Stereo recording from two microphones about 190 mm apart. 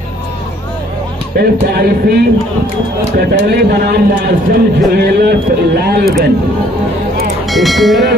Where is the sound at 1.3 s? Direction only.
55° right (ahead or behind).